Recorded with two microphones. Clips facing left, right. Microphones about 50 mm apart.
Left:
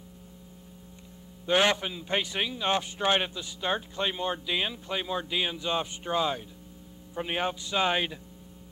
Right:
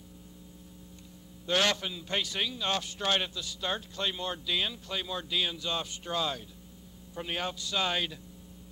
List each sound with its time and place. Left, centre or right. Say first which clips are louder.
1.4 s a man's voice: left 4 dB; left